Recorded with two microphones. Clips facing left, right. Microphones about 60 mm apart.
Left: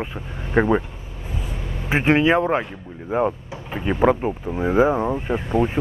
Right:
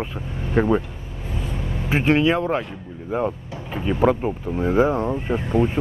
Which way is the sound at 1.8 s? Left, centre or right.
Left.